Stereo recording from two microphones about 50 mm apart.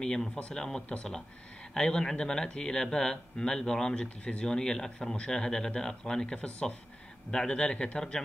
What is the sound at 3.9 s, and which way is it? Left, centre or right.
Speech, left.